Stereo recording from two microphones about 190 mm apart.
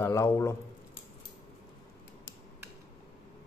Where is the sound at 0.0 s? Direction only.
15° left (ahead or behind).